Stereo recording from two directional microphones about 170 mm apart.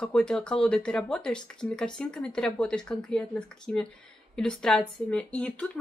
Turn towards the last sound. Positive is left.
turn(degrees=10)  # may be behind; listen again after turning